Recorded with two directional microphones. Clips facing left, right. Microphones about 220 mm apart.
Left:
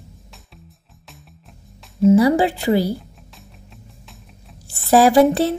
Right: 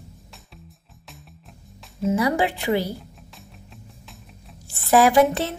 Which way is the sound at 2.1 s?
35° left (ahead or behind).